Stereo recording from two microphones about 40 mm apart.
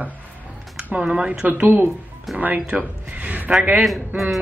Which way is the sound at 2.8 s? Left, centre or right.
Right.